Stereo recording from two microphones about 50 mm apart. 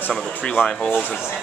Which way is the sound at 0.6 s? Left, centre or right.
Left.